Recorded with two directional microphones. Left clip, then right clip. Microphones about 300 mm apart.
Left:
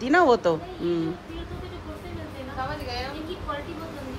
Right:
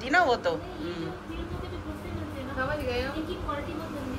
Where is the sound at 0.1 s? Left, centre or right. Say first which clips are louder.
Left 4 dB; left.